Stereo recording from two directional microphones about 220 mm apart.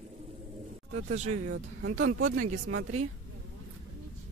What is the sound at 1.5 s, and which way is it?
Speech, 60° right (ahead or behind).